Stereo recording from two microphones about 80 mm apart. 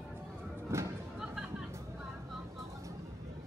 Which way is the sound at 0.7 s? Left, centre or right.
Right.